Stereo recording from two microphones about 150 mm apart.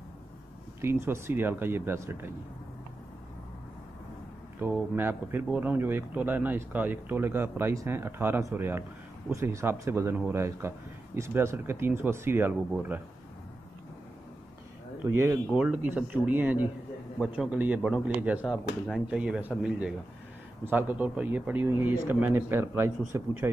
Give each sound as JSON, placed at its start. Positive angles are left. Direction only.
{"t": 0.7, "sound": "speech", "side_deg": -15}
{"t": 4.6, "sound": "speech", "side_deg": -15}
{"t": 15.5, "sound": "speech", "side_deg": -10}
{"t": 17.2, "sound": "a man's voice", "side_deg": 0}